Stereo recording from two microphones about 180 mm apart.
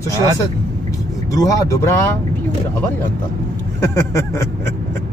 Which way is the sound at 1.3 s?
20° left (ahead or behind).